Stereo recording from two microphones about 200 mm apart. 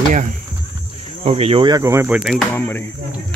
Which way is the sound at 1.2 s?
30° right (ahead or behind).